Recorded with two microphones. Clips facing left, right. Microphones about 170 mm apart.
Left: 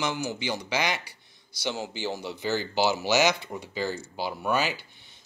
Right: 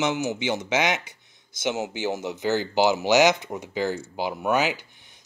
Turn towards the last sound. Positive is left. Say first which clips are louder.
# right 4 dB
turn(degrees=-15)  # may be behind; listen again after turning